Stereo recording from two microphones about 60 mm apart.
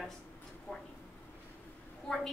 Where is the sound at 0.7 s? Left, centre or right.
Left.